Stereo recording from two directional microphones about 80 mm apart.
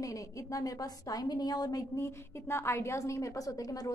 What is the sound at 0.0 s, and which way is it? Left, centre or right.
A woman's voice, left.